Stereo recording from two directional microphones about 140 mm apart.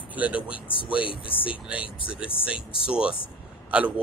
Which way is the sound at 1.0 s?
40° left (ahead or behind).